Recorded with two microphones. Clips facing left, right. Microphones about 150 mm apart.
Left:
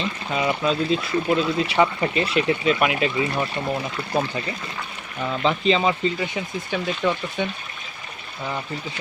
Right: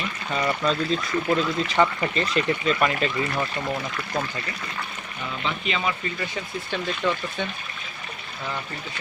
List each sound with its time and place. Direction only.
0.3 s speech: 10° left (ahead or behind)
3.9 s speech: 25° left (ahead or behind)
6.3 s speech: 15° left (ahead or behind)